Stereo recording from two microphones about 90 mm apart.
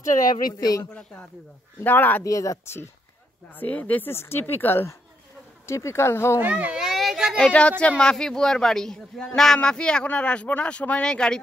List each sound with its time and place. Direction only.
0.3 s speech: 45° left (ahead or behind)
0.8 s a man's voice: 15° left (ahead or behind)
2.2 s speech: 40° left (ahead or behind)
3.5 s speech: 15° left (ahead or behind)
6.3 s speech: 20° right (ahead or behind)
8.0 s a man's voice: 10° left (ahead or behind)